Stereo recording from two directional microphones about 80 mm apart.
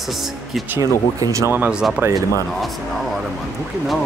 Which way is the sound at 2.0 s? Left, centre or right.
Right.